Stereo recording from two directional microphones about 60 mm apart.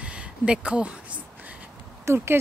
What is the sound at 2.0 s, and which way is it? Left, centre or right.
Speech, right.